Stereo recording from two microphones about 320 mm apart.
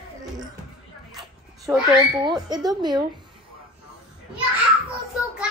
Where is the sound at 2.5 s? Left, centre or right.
Centre.